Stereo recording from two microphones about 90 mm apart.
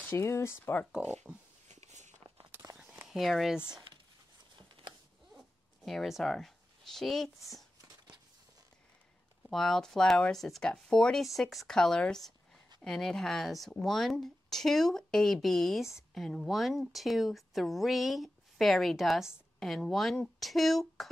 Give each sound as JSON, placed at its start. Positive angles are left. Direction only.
{"t": 0.0, "sound": "speech", "side_deg": 25}
{"t": 2.8, "sound": "a sound", "side_deg": -15}
{"t": 3.1, "sound": "speech", "side_deg": 0}
{"t": 5.9, "sound": "speech", "side_deg": 0}
{"t": 9.5, "sound": "speech", "side_deg": 5}